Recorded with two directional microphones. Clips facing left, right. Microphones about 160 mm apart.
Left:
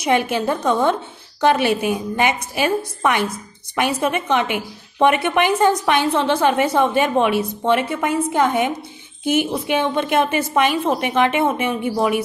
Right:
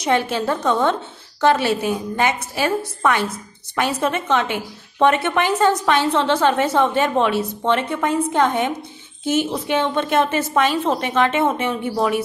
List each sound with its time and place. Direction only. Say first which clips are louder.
0.0 s a woman's voice: left 1 dB; 15° left (ahead or behind)